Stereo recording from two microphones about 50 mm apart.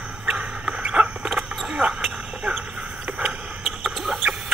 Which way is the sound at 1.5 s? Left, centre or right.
Centre.